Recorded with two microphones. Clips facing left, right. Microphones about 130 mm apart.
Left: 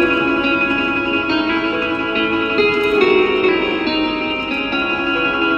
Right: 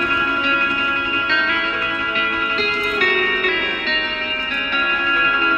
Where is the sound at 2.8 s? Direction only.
30° left (ahead or behind).